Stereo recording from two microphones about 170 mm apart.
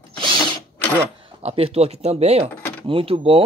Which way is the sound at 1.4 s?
35° right (ahead or behind).